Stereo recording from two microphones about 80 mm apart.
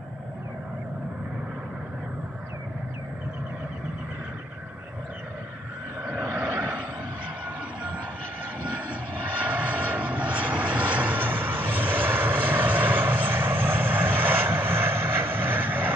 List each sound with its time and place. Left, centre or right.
6.0 s vehicle: centre
8.6 s vehicle: centre